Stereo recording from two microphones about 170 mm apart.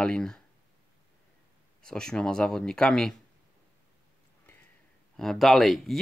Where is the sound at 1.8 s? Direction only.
5° left (ahead or behind).